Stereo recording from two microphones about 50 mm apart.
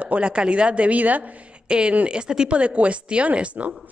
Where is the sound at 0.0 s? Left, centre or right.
Right.